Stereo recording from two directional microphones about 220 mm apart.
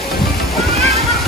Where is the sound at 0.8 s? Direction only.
30° right (ahead or behind).